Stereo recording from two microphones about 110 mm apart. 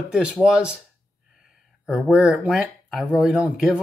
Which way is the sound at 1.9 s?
5° right (ahead or behind).